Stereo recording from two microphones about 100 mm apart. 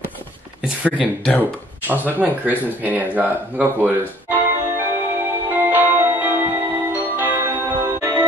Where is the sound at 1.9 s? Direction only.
20° right (ahead or behind).